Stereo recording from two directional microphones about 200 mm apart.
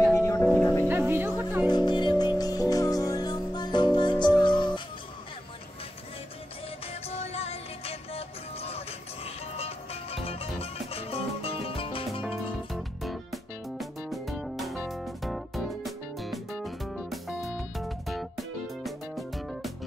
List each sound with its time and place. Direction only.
0.1 s music: 15° left (ahead or behind)
0.8 s music: 10° right (ahead or behind)
1.7 s music: 20° left (ahead or behind)
6.9 s music: 30° left (ahead or behind)
12.2 s music: 5° right (ahead or behind)